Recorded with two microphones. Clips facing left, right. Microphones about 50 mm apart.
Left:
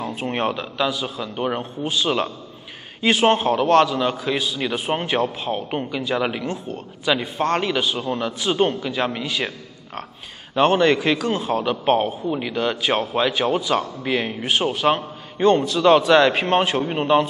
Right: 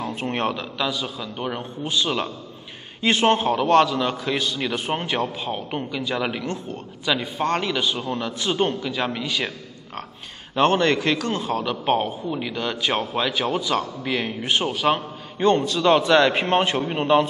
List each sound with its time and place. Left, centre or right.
0.0 s a man's voice: centre
10.5 s a man's voice: centre
11.8 s a man's voice: centre
12.9 s a man's voice: centre